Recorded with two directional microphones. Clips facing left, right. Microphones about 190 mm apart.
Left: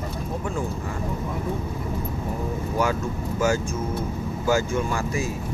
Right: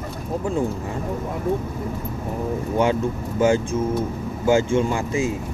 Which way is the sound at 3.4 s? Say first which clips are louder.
Right 5 dB; 30° right (ahead or behind).